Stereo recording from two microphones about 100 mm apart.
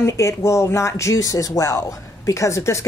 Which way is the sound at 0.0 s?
30° left (ahead or behind).